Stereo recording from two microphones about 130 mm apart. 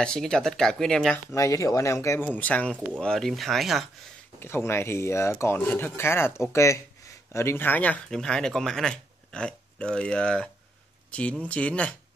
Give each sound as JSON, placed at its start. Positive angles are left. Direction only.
{"t": 0.0, "sound": "speech", "side_deg": 5}
{"t": 1.3, "sound": "speech", "side_deg": 25}
{"t": 2.3, "sound": "speech", "side_deg": 10}
{"t": 4.4, "sound": "speech", "side_deg": 20}